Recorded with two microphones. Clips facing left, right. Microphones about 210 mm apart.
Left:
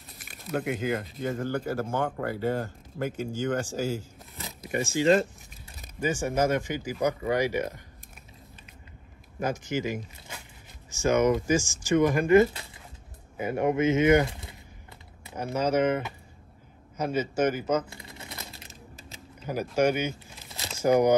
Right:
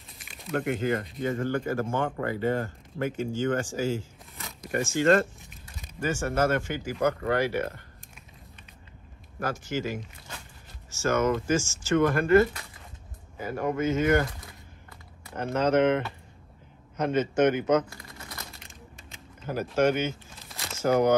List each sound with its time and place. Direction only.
0.1 s speech: centre (ahead or behind)
4.5 s a sound: 5° left (ahead or behind)
5.9 s speech: 15° left (ahead or behind)
9.4 s speech: 15° left (ahead or behind)
15.3 s speech: 10° left (ahead or behind)
17.8 s typing: 25° left (ahead or behind)
18.7 s mechanisms: 5° left (ahead or behind)
20.3 s crumpling: centre (ahead or behind)
20.7 s speech: 15° left (ahead or behind)